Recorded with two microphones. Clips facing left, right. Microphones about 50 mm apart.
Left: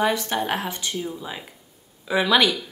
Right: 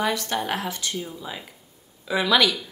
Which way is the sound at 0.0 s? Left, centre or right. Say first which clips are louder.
Left 2 dB; left.